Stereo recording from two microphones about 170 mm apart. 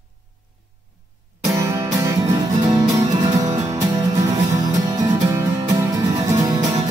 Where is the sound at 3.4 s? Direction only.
40° right (ahead or behind).